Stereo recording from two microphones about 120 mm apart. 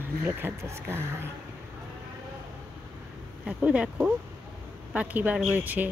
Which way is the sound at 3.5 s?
10° right (ahead or behind).